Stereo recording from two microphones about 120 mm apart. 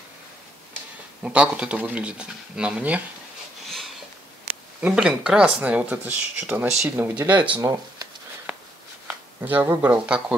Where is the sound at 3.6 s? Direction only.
Centre (ahead or behind).